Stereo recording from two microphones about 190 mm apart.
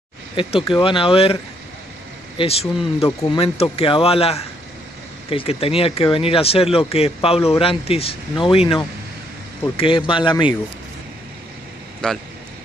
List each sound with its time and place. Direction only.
0.4 s speech: 25° left (ahead or behind)
9.8 s speech: 25° left (ahead or behind)
12.0 s speech: 5° left (ahead or behind)